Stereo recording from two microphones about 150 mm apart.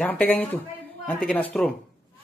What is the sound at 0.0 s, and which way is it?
Speech, 10° left (ahead or behind).